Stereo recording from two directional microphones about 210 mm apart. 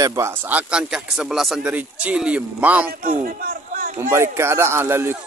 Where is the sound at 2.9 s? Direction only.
45° right (ahead or behind).